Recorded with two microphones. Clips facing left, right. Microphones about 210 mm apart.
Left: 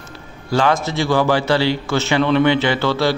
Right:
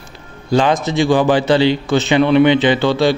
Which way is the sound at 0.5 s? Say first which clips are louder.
Right 3 dB; 20° right (ahead or behind).